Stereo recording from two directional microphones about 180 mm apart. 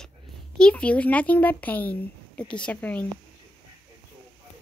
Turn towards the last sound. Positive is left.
turn(degrees=10)  # may be behind; listen again after turning